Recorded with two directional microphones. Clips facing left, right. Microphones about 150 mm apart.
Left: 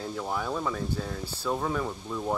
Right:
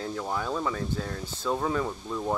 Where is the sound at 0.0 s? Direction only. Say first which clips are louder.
Right 1 dB; 5° left (ahead or behind).